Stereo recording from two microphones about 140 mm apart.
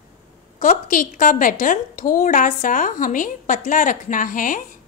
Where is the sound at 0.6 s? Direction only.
70° left (ahead or behind).